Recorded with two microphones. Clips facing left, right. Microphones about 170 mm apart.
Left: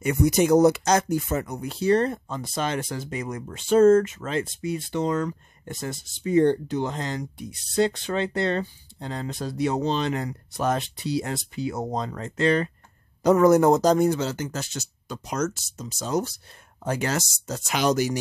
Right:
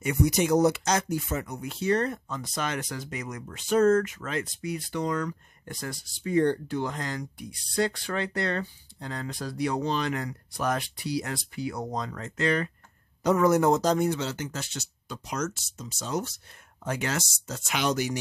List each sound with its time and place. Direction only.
0.0 s speech: 50° left (ahead or behind); by 12.7 s 30° left (ahead or behind)
13.2 s speech: 40° left (ahead or behind)